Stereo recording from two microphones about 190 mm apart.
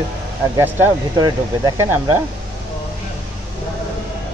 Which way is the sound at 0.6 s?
15° right (ahead or behind).